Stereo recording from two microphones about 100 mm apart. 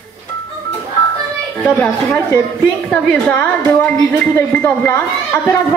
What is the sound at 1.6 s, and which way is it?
A woman's voice, 15° left (ahead or behind).